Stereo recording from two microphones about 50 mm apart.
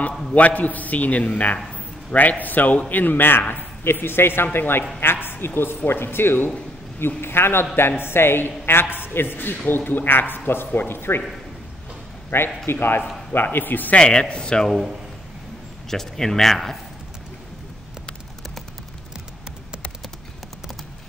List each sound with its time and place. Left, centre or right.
0.3 s a man's voice: left
2.4 s a man's voice: left
12.3 s a man's voice: left
13.9 s a man's voice: centre
14.7 s a man's voice: centre
15.9 s speech: centre